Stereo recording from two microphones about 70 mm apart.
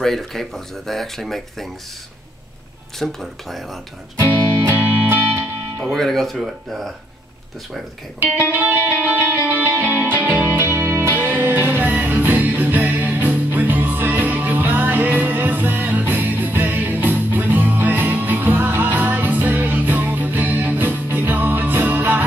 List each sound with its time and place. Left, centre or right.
0.0 s speech: centre
3.0 s speech: centre
4.2 s music: right
5.9 s speech: centre
8.2 s music: right